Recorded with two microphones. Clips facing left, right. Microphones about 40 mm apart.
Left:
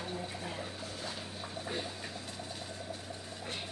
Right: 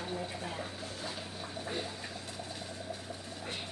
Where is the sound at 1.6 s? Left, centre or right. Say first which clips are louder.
Right 1 dB; centre.